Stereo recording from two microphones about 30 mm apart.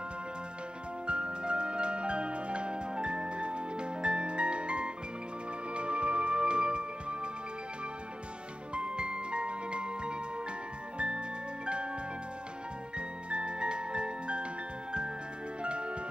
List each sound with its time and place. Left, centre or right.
1.0 s music: right
8.7 s music: right
12.9 s music: right